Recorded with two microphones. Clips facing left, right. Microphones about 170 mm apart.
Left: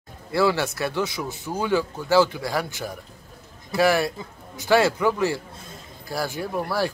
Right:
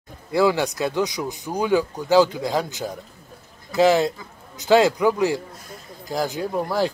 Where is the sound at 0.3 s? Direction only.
15° right (ahead or behind).